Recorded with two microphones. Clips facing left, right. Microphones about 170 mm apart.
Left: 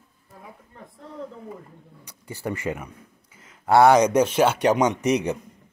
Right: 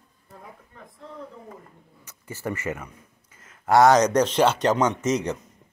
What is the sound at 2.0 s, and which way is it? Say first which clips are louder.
Speech: left 1 dB; 15° left (ahead or behind).